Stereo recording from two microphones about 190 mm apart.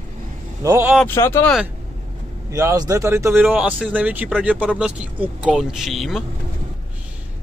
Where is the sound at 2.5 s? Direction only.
15° right (ahead or behind); by 6.2 s centre (ahead or behind).